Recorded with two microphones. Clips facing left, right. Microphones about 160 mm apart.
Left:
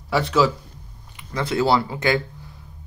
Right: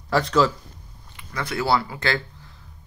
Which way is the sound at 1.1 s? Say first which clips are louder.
Left 5 dB; 20° left (ahead or behind).